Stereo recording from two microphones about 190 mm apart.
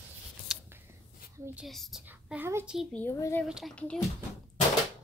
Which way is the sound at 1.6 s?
Centre (ahead or behind).